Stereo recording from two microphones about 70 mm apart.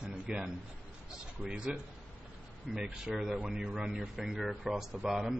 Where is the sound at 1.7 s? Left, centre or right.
Centre.